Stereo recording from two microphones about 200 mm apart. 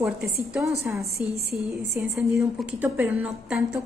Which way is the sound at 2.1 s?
Centre (ahead or behind).